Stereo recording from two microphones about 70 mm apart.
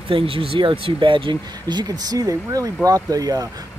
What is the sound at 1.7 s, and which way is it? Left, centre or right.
Speech, right.